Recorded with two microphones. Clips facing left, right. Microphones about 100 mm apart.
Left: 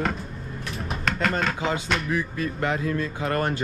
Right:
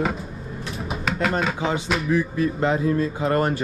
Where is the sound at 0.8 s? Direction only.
5° right (ahead or behind).